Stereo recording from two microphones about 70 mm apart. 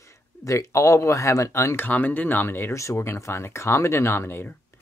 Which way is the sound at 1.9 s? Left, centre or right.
Left.